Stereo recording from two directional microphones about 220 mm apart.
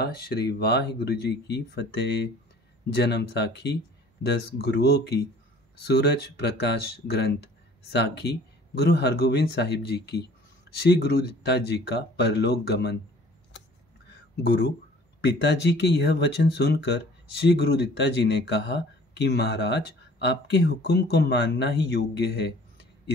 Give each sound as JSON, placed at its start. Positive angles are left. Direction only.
{"t": 0.0, "sound": "speech", "side_deg": 45}
{"t": 15.2, "sound": "speech", "side_deg": 50}